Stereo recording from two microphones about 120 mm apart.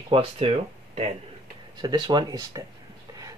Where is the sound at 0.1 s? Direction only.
50° right (ahead or behind).